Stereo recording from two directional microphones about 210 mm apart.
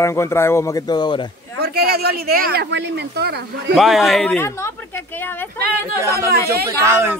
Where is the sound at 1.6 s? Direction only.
50° right (ahead or behind).